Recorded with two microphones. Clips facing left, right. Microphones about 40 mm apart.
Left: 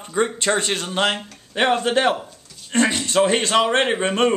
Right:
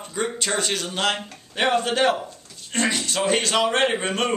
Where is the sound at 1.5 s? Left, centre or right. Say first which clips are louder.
Left 2 dB; centre.